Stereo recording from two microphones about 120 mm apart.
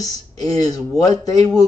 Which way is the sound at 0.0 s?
30° left (ahead or behind).